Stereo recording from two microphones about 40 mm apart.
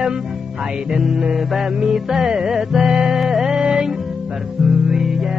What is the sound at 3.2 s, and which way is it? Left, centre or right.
Music, centre.